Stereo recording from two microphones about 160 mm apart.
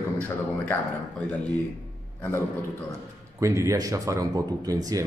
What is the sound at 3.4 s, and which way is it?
Speech, 20° right (ahead or behind).